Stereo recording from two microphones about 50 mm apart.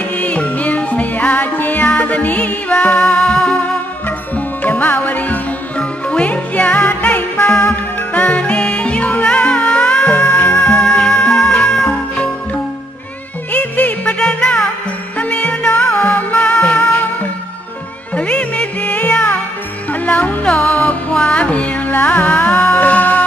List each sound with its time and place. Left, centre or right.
0.0 s music: left
4.4 s music: left
5.8 s music: left
10.9 s music: centre
13.5 s music: left
14.1 s music: centre
15.1 s music: left
18.1 s music: left